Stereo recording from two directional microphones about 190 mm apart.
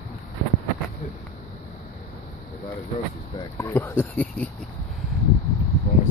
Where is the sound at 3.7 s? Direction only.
10° left (ahead or behind).